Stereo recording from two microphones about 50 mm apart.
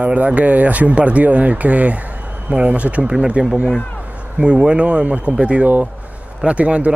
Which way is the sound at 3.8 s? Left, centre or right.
Left.